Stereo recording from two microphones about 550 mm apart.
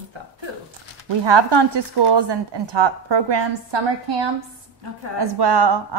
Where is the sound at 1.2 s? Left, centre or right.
Right.